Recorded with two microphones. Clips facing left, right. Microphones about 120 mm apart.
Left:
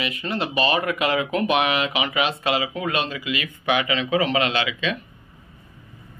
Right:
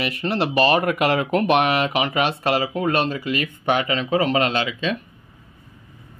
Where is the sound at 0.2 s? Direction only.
25° right (ahead or behind).